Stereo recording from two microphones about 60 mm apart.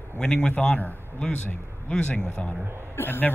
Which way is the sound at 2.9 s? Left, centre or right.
Left.